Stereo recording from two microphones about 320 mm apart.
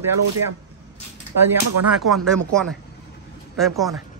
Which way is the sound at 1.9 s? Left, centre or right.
Centre.